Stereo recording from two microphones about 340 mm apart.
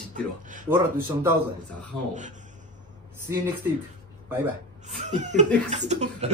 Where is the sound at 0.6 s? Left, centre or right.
Centre.